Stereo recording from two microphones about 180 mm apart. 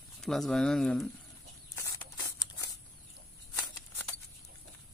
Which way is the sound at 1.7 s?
20° left (ahead or behind).